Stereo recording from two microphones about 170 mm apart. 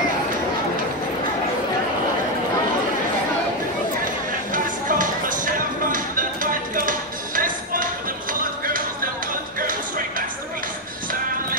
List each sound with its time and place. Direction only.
4.0 s music: 50° right (ahead or behind)